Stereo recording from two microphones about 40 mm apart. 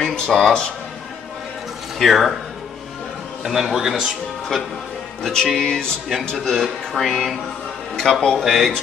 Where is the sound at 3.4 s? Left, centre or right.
Centre.